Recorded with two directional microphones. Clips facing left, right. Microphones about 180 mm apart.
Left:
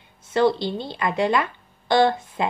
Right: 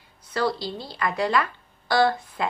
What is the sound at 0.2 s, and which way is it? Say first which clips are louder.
Speech: left 6 dB; 25° left (ahead or behind).